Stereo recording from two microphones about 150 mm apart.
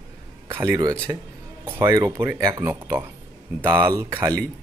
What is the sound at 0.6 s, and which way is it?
Speech, 25° right (ahead or behind).